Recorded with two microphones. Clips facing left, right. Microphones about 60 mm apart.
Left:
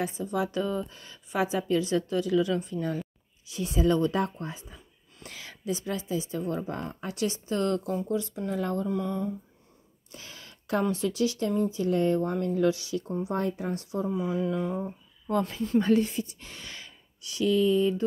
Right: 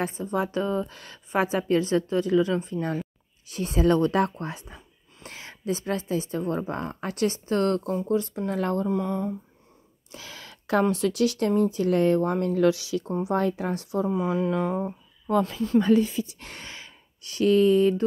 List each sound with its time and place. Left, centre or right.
0.0 s speech: right
0.8 s a sound: right
1.3 s speech: right
5.2 s a woman's voice: right
8.8 s speech: right
10.1 s speech: right
14.0 s a sound: right
16.3 s a sound: right
16.6 s gasp: right
17.2 s speech: right